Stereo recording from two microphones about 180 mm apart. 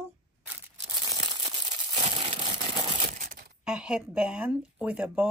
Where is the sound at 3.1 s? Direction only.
45° right (ahead or behind).